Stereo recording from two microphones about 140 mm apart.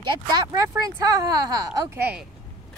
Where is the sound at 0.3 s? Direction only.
25° right (ahead or behind).